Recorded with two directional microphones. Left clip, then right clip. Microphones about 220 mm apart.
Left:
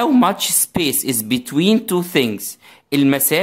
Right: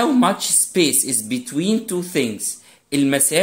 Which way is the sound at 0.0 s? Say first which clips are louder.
Left 2 dB; 25° left (ahead or behind).